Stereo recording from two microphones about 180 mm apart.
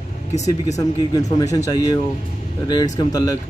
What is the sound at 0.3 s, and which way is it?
Speech, 40° left (ahead or behind).